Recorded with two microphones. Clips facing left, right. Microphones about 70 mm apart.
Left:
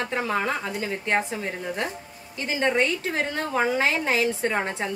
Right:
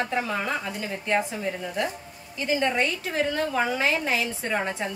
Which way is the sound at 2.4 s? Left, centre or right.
Left.